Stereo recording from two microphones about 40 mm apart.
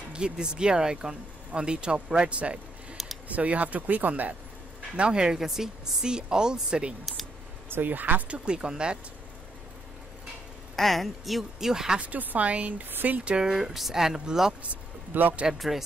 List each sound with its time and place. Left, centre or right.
0.1 s speech: right
4.9 s a woman's voice: right
7.7 s speech: right
8.3 s a woman's voice: right
10.8 s speech: centre
11.7 s speech: centre
12.0 s speech: right
13.2 s speech: right
15.1 s speech: right
15.5 s speech: centre